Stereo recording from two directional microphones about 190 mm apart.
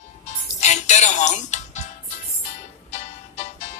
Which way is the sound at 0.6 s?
40° left (ahead or behind).